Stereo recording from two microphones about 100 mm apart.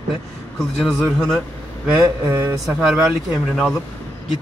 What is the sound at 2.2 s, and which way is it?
Speech, 20° right (ahead or behind).